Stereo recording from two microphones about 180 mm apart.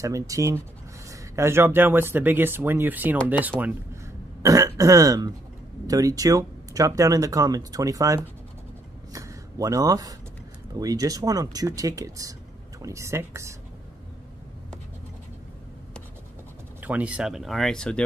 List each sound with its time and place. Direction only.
0.0 s speech: 20° right (ahead or behind)
3.6 s throat clearing: 15° right (ahead or behind)
5.9 s speech: 20° right (ahead or behind)
16.8 s speech: 10° right (ahead or behind)